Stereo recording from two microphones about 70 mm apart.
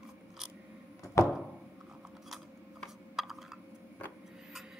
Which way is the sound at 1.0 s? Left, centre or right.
Left.